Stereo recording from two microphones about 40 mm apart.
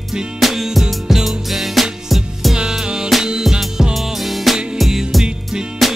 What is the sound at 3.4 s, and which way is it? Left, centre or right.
Music, centre.